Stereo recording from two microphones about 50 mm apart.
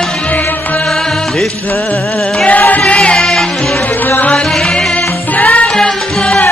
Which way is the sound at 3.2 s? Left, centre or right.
Centre.